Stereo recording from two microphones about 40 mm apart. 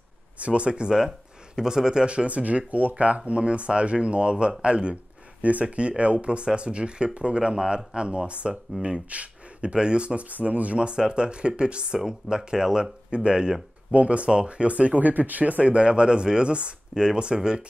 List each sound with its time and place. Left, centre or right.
0.4 s speech: right
2.0 s speech: right
10.3 s speech: right
10.8 s speech: right
12.0 s speech: centre